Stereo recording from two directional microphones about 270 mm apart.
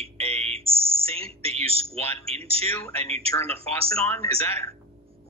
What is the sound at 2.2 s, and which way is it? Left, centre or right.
Speech, right.